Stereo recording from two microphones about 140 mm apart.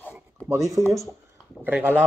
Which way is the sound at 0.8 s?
25° right (ahead or behind).